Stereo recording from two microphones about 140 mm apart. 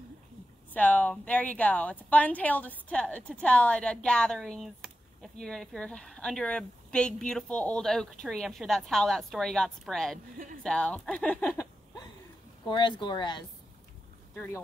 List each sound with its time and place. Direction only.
0.7 s a woman's voice: 10° left (ahead or behind)
10.3 s speech: 80° right
10.6 s a woman's voice: 10° left (ahead or behind)
12.6 s speech: 35° left (ahead or behind)